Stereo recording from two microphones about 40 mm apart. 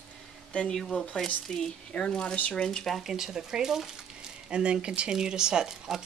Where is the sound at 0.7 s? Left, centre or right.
Centre.